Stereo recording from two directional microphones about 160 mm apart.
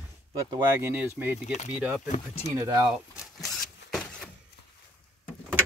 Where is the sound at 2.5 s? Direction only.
25° right (ahead or behind).